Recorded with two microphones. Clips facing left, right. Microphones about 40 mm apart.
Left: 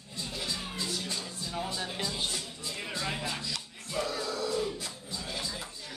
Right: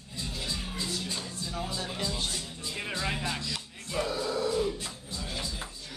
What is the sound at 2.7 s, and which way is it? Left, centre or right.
Music, centre.